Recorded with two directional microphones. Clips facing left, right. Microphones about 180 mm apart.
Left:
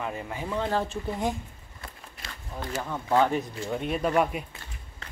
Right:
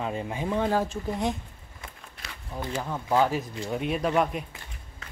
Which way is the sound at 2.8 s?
10° right (ahead or behind).